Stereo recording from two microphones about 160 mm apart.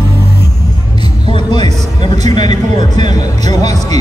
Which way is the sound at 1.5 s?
30° left (ahead or behind).